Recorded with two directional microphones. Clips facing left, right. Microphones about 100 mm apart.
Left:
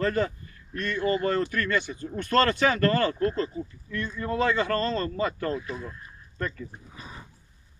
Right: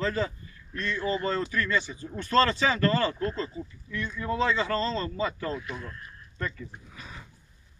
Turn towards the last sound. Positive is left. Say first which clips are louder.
# left 2 dB
turn(degrees=30)  # may be behind; listen again after turning